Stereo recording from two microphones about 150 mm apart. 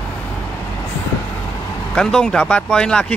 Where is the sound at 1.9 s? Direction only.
5° left (ahead or behind).